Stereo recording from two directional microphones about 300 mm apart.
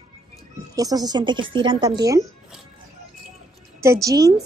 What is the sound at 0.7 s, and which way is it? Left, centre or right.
Speech, centre.